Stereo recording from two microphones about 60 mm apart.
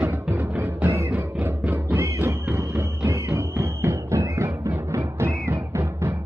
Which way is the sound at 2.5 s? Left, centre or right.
Right.